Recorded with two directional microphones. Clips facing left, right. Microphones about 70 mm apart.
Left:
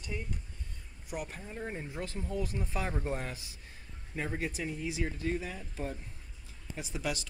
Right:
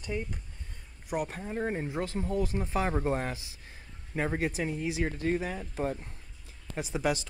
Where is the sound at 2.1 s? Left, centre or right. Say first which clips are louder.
Right 4 dB; right.